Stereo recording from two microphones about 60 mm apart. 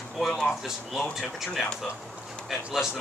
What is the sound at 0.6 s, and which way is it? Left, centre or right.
Speech, centre.